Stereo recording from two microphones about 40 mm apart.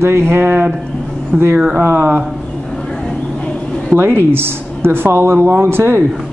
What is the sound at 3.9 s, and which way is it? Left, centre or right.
A woman's voice, right.